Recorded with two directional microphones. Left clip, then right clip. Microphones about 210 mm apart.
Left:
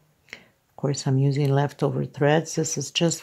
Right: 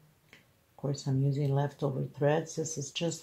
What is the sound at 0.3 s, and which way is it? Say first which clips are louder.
Speech: left 16 dB; 40° left (ahead or behind).